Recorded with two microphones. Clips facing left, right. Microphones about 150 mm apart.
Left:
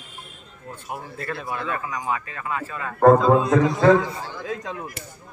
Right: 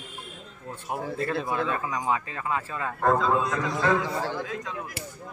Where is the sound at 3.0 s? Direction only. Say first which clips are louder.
Left 9 dB; 40° left (ahead or behind).